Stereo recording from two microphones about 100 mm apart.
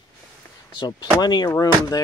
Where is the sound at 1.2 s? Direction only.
45° left (ahead or behind).